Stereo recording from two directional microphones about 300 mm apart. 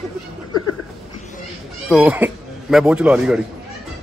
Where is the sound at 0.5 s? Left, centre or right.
Left.